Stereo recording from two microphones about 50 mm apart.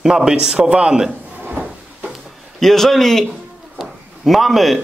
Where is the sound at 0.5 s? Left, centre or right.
Right.